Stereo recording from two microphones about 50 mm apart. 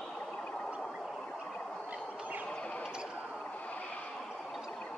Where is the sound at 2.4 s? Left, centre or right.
Left.